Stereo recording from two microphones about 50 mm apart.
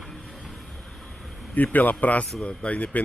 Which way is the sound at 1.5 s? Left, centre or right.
Left.